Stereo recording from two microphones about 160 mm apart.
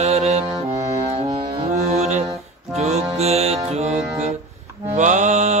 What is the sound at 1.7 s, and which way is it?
Music, 45° right (ahead or behind).